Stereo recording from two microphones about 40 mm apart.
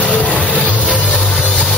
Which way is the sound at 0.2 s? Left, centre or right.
Left.